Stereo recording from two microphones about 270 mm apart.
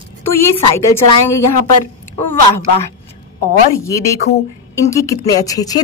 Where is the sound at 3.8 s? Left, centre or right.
Centre.